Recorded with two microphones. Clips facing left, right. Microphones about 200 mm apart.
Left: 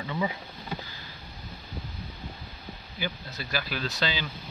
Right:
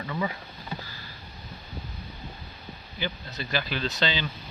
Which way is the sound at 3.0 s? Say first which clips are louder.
Right 1 dB; 10° left (ahead or behind).